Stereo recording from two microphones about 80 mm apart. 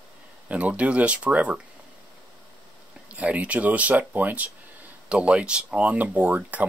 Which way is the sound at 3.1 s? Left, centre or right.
Centre.